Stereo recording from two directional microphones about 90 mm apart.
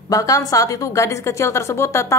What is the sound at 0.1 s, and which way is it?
A woman's voice, 40° left (ahead or behind).